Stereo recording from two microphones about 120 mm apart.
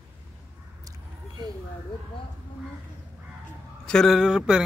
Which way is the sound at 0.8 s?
35° right (ahead or behind).